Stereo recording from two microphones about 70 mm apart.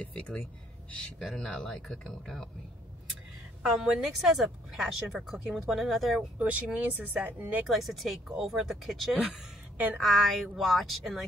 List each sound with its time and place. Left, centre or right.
0.0 s speech: centre
1.2 s speech: centre
3.6 s a woman's voice: centre
6.3 s speech: right
7.6 s a woman's voice: centre